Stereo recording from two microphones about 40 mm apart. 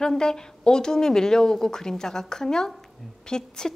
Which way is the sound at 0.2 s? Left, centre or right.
Centre.